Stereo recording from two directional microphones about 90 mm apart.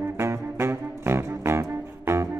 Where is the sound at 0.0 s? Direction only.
30° right (ahead or behind).